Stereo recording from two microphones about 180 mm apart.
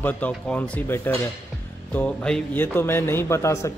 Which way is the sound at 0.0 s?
10° left (ahead or behind).